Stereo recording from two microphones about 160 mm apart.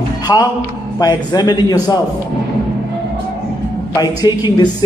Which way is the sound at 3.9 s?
25° left (ahead or behind).